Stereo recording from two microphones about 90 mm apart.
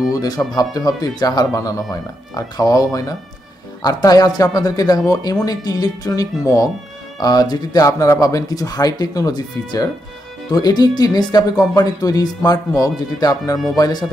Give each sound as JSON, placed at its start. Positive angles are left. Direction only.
{"t": 0.1, "sound": "speech", "side_deg": 40}